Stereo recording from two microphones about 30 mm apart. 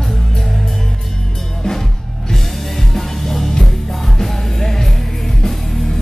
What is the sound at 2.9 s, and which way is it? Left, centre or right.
Music, centre.